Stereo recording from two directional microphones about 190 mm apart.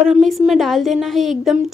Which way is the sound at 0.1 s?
Centre (ahead or behind).